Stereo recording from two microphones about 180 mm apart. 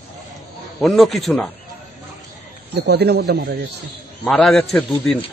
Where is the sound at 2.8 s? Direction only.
65° right (ahead or behind).